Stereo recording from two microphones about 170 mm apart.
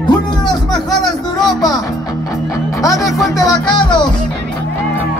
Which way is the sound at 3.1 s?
20° left (ahead or behind).